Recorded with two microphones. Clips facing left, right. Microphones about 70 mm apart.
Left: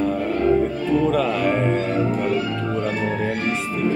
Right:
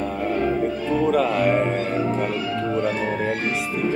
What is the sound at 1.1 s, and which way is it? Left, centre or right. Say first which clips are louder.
Music: right 1 dB; centre.